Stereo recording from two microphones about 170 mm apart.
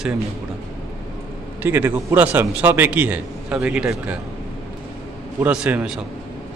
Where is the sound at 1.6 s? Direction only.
10° right (ahead or behind).